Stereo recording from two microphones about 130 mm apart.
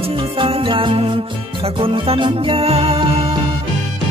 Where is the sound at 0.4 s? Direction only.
40° right (ahead or behind).